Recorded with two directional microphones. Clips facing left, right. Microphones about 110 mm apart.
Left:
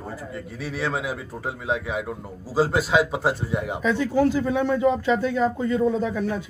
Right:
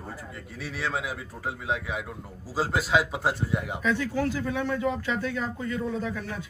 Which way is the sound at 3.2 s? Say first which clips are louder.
Left 3 dB; 30° left (ahead or behind).